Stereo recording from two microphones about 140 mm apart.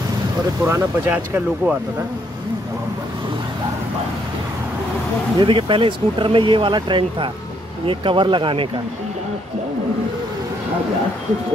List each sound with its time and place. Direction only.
0.7 s speech: 15° right (ahead or behind)
5.4 s speech: 35° right (ahead or behind)